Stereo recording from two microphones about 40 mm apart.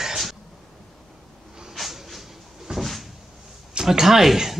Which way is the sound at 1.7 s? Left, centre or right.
Centre.